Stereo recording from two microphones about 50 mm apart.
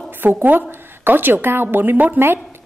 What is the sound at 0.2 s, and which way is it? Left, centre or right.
A woman's voice, right.